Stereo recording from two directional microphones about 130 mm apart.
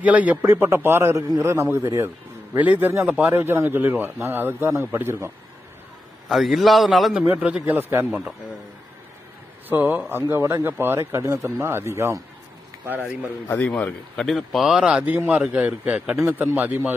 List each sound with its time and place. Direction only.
0.0 s a man's voice: 10° right (ahead or behind)
6.2 s a man's voice: centre (ahead or behind)
9.7 s a man's voice: 15° right (ahead or behind)
13.0 s a man's voice: 15° left (ahead or behind); by 16.9 s 15° right (ahead or behind)